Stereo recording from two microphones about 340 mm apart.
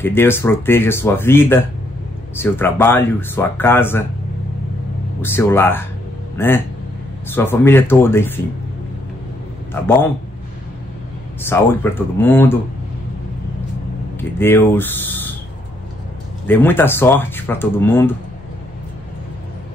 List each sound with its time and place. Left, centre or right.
0.0 s speech: centre
5.2 s speech: centre
9.8 s speech: centre
11.4 s speech: centre
14.4 s speech: centre
16.4 s speech: centre